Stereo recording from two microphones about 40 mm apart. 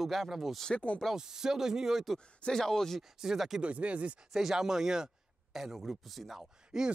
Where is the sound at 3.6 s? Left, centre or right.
Right.